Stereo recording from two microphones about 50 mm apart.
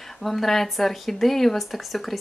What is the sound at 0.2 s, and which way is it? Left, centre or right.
Speech, centre.